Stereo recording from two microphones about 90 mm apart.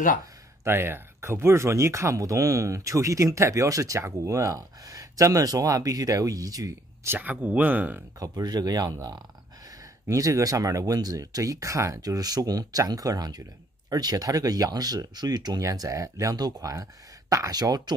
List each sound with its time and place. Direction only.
0.7 s speech: 25° right (ahead or behind)
7.2 s speech: 15° right (ahead or behind)
8.2 s speech: 45° right (ahead or behind)